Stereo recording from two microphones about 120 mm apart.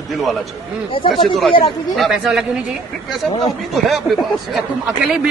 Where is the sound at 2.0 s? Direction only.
5° right (ahead or behind).